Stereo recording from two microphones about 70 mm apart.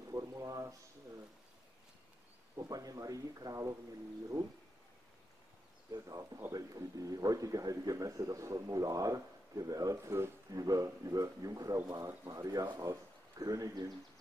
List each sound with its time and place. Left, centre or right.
0.1 s a sound: right
2.5 s a man's voice: right
6.0 s a man's voice: right